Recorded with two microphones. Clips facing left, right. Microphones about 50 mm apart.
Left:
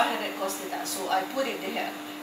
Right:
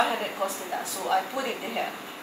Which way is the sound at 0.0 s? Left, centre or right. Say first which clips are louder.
Right 1 dB; centre.